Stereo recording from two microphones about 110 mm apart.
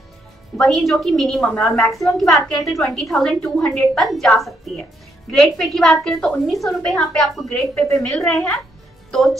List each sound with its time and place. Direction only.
0.6 s a woman's voice: centre (ahead or behind)
9.1 s a woman's voice: centre (ahead or behind)